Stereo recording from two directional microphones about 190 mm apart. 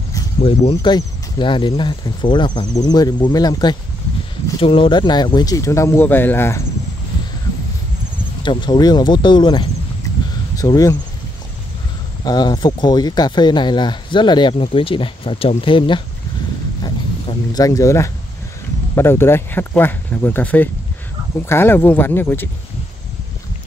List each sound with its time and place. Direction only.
0.4 s speech: 30° left (ahead or behind); by 6.6 s 10° left (ahead or behind)
8.4 s speech: 25° left (ahead or behind)
12.3 s speech: 20° left (ahead or behind)
16.8 s a sound: 20° left (ahead or behind)
18.9 s speech: 15° left (ahead or behind)